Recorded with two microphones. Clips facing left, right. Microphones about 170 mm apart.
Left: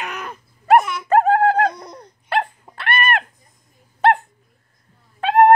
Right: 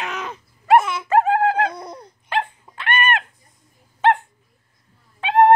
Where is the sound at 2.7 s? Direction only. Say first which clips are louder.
Even; 50° left (ahead or behind).